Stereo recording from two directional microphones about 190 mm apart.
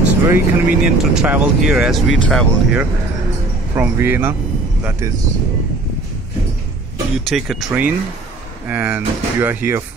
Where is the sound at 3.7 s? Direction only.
10° right (ahead or behind).